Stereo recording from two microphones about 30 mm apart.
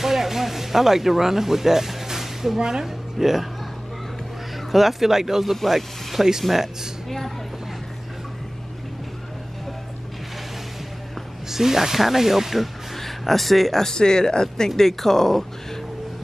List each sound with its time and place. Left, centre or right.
0.0 s a sound: centre
2.6 s speech: centre
4.7 s speech: centre
7.1 s speech: centre
11.5 s speech: centre
12.9 s a man's voice: centre
13.9 s speech: left
14.8 s speech: centre